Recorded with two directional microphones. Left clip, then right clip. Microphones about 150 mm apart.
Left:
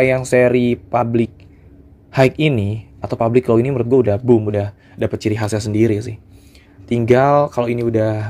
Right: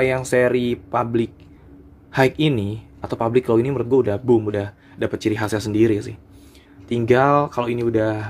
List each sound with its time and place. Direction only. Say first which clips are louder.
0.0 s speech: left 4 dB; 20° left (ahead or behind)